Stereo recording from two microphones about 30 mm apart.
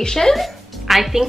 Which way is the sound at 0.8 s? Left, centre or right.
Centre.